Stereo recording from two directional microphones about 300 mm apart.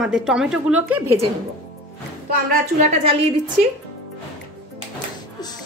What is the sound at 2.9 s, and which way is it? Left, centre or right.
Speech, right.